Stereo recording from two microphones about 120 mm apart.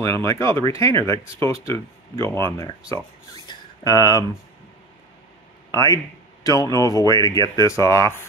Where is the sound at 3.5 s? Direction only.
35° left (ahead or behind).